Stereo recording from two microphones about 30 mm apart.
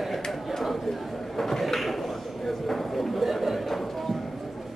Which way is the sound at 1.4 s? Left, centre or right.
Centre.